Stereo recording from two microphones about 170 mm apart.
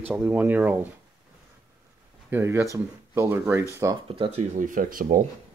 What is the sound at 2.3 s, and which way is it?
Speech, 15° right (ahead or behind).